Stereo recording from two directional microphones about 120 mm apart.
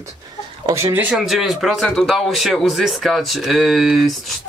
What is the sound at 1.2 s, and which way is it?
Speech, 5° right (ahead or behind).